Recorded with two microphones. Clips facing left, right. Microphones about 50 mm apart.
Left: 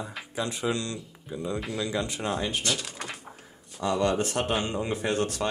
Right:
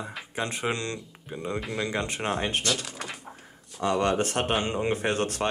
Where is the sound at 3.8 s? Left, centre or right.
Right.